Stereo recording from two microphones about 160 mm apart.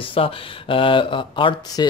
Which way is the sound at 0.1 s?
35° left (ahead or behind).